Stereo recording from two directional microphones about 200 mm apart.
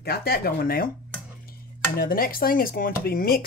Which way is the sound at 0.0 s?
50° left (ahead or behind).